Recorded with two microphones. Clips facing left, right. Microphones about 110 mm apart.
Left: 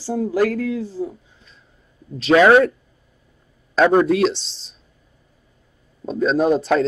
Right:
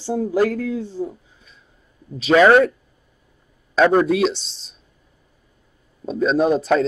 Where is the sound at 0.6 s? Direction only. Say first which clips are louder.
Left 1 dB; 20° right (ahead or behind).